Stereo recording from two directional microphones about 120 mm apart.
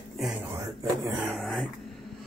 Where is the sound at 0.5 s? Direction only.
25° right (ahead or behind).